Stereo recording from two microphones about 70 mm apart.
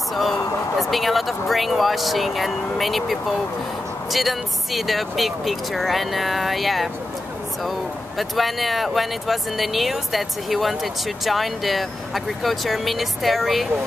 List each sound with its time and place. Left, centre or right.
0.1 s speech: centre
8.2 s speech: centre